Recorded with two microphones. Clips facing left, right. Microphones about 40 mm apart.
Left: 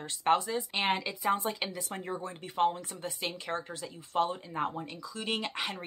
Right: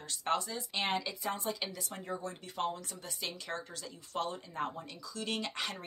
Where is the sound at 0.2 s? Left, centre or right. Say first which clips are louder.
Left 7 dB; left.